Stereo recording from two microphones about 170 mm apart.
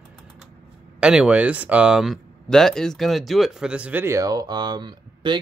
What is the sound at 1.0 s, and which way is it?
Speech, 5° right (ahead or behind).